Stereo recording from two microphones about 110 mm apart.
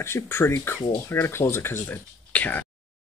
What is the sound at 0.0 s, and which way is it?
Speech, 25° left (ahead or behind).